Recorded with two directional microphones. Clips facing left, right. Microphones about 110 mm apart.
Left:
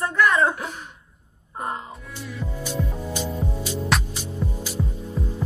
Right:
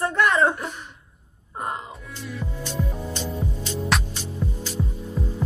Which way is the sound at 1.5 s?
Centre (ahead or behind).